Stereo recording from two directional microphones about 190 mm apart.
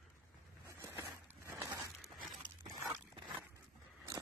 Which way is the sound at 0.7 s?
15° right (ahead or behind).